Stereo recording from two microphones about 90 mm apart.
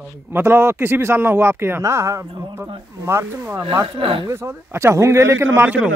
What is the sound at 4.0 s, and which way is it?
Speech, 90° right.